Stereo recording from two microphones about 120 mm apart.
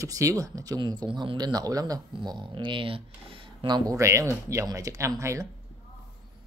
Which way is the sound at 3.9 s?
25° right (ahead or behind).